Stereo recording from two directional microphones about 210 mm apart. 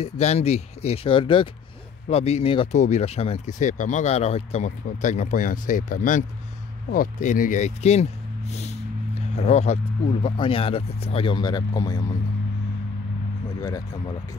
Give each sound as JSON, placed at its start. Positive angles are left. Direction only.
{"t": 0.0, "sound": "speech", "side_deg": 30}
{"t": 13.6, "sound": "speech", "side_deg": 15}